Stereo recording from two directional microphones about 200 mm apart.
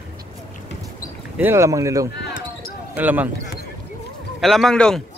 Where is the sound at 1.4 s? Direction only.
15° right (ahead or behind).